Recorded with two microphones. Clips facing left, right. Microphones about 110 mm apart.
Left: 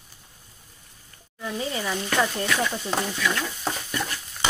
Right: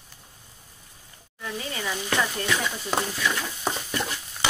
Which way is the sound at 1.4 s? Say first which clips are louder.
Left 4 dB; 20° left (ahead or behind).